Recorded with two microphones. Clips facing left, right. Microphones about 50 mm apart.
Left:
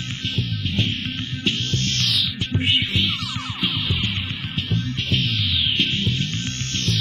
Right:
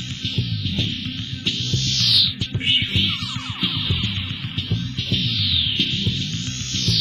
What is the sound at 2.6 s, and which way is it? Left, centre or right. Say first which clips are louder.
Music: right 1 dB; centre.